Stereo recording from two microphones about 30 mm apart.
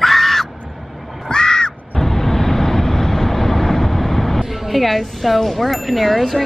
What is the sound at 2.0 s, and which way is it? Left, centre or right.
Vehicle, centre.